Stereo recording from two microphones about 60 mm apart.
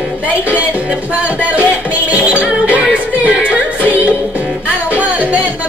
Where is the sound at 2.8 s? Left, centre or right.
Right.